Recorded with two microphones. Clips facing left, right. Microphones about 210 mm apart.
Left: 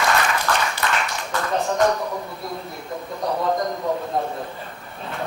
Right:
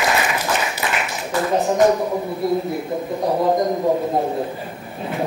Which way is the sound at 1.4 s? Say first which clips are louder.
Right 5 dB; 20° right (ahead or behind).